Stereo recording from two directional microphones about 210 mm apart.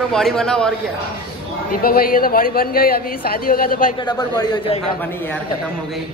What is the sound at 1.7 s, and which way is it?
A woman's voice, 45° left (ahead or behind).